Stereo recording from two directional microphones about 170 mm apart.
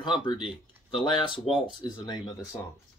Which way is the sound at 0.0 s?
30° left (ahead or behind).